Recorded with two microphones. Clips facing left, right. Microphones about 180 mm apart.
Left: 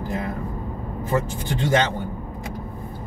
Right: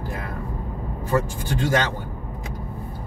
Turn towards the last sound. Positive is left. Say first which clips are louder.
# left 1 dB
turn(degrees=20)  # may be behind; listen again after turning